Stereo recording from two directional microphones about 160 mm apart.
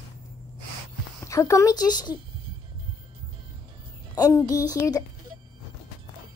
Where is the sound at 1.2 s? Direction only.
20° left (ahead or behind).